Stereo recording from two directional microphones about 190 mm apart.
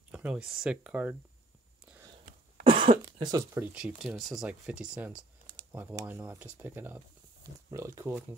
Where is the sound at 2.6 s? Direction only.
25° right (ahead or behind).